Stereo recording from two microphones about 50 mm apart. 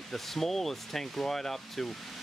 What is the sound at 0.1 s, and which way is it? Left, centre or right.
Speech, centre.